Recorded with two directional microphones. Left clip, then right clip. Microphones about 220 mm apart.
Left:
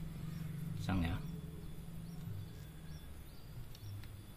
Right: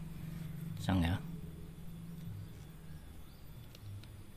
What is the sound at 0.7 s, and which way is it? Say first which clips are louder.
Speech: right 5 dB; 45° right (ahead or behind).